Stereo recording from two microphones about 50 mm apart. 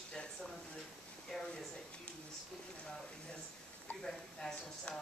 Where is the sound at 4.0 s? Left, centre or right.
Centre.